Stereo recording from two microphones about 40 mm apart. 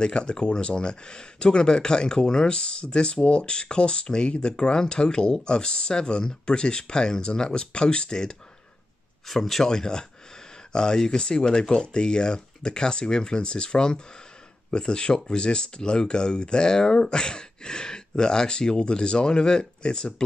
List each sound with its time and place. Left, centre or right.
0.0 s speech: left
9.3 s speech: centre
9.7 s speech: centre